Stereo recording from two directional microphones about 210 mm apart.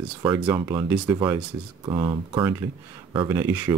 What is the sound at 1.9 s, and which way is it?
Speech, 20° right (ahead or behind).